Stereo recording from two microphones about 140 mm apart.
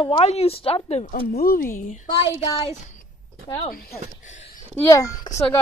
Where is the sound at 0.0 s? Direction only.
45° left (ahead or behind).